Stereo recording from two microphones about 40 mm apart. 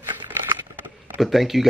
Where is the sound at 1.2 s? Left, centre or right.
Centre.